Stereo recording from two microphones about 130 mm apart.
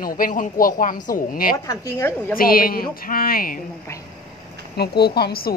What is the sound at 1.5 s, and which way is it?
Speech, 25° left (ahead or behind).